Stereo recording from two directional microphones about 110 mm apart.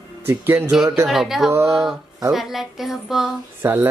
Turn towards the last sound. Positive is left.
turn(degrees=-20)  # may be behind; listen again after turning